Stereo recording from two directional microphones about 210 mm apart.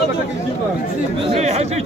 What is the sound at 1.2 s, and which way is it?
Chatter, 30° right (ahead or behind).